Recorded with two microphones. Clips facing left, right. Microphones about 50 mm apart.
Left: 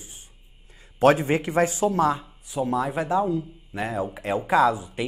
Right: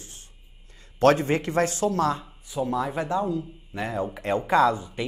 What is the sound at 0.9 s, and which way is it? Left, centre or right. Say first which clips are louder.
Speech: left 1 dB; centre.